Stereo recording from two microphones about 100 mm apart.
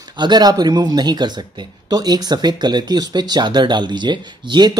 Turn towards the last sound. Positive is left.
turn(degrees=-50)  # may be behind; listen again after turning